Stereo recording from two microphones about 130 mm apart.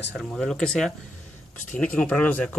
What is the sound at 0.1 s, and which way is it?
Speech, 5° left (ahead or behind).